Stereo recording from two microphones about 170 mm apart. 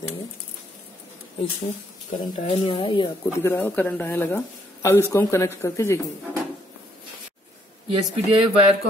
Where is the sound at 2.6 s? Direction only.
30° left (ahead or behind).